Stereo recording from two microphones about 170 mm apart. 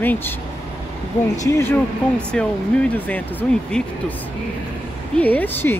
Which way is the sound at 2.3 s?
5° left (ahead or behind).